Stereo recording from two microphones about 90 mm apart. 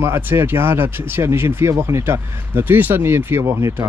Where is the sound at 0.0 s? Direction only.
25° right (ahead or behind).